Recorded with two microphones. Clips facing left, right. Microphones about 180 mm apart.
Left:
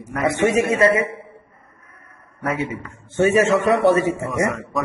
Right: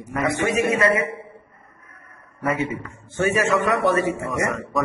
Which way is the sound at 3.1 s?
25° left (ahead or behind).